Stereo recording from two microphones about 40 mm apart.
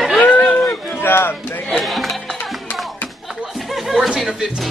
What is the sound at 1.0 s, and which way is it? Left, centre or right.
Music, left.